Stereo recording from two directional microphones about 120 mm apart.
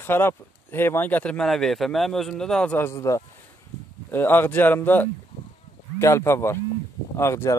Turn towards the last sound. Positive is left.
turn(degrees=25)  # may be behind; listen again after turning